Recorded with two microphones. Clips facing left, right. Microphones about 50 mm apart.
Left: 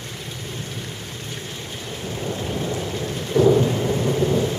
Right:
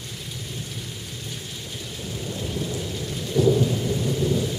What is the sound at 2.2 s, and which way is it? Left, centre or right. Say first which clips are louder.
Thunder: left 4 dB; left.